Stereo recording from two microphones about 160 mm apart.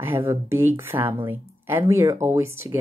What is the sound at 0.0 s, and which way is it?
Speech, 15° right (ahead or behind).